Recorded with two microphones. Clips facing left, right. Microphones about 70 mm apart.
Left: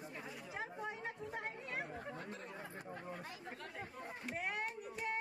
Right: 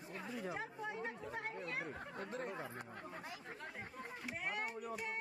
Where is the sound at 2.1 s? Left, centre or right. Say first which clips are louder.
Right 4 dB; right.